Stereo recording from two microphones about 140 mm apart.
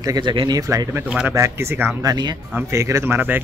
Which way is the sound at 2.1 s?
30° right (ahead or behind).